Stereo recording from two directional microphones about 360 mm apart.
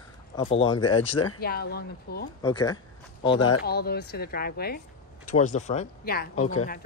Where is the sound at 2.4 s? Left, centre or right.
Centre.